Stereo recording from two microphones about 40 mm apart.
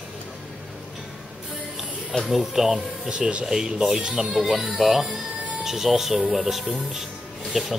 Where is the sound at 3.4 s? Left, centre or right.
Centre.